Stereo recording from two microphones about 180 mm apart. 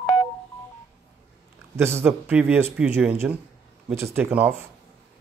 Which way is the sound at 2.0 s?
10° right (ahead or behind).